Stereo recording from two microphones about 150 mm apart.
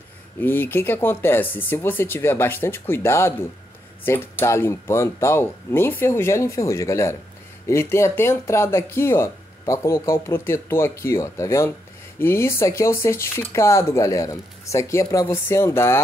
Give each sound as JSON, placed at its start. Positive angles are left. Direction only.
{"t": 0.4, "sound": "speech", "side_deg": 15}